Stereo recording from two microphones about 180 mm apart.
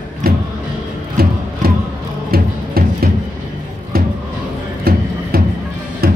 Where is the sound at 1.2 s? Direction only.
55° right (ahead or behind).